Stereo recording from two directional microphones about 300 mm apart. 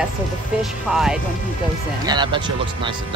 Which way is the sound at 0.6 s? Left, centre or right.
Centre.